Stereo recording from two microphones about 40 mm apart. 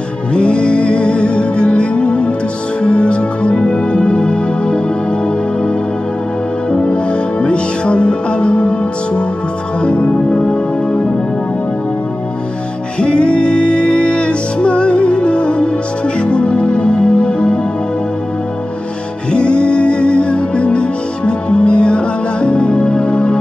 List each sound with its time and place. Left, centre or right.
0.3 s music: left
6.7 s music: left
13.0 s music: left
19.3 s music: left